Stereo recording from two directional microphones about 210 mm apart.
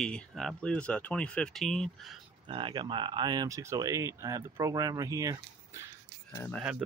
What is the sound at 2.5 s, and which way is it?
Speech, 25° right (ahead or behind).